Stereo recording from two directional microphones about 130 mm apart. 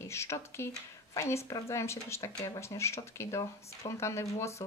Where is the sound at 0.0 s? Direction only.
20° left (ahead or behind).